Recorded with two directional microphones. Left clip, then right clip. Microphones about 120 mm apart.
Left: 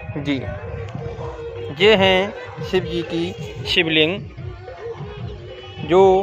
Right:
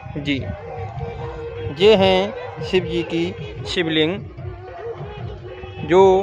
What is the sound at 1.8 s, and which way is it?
Speech, 25° right (ahead or behind).